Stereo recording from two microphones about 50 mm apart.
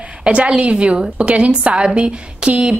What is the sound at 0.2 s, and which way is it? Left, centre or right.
A woman's voice, right.